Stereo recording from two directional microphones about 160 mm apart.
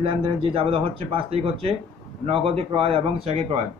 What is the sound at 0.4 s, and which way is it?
Speech, 35° right (ahead or behind).